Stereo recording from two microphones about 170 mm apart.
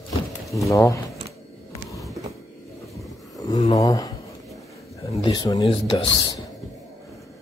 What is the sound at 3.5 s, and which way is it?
Speech, 25° left (ahead or behind).